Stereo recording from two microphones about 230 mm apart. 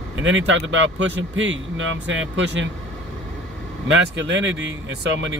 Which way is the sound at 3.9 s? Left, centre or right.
Right.